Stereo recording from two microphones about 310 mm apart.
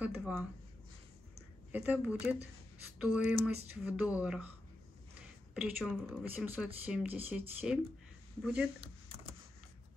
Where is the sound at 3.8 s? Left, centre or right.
Centre.